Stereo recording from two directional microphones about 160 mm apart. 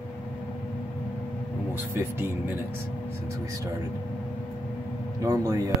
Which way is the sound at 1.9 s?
15° right (ahead or behind).